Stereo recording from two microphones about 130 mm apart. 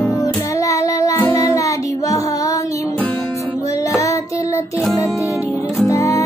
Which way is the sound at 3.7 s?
25° left (ahead or behind).